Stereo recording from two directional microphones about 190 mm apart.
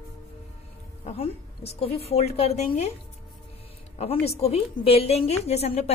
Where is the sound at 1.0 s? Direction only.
30° left (ahead or behind).